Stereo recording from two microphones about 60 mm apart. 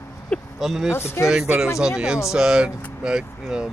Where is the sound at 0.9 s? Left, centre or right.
Left.